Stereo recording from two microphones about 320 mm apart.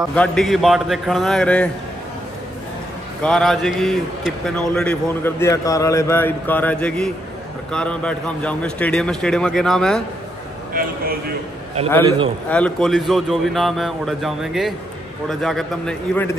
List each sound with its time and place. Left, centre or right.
0.1 s a man's voice: centre
3.2 s a man's voice: centre
10.7 s a man's voice: right
12.4 s a man's voice: centre